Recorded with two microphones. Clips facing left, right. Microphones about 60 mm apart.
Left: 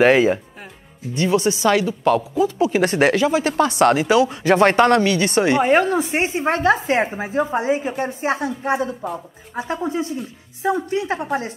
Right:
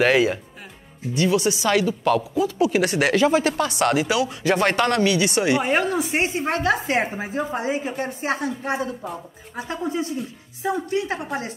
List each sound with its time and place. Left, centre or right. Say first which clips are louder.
0.0 s speech: left 4 dB; centre
1.1 s speech: left 2 dB; left
1.7 s speech: left 2 dB; centre
2.6 s speech: left 3 dB; left
5.6 s speech: left 5 dB; centre
8.5 s speech: left 4 dB; centre
9.0 s speech: left 5 dB; centre
9.6 s speech: left 3 dB; left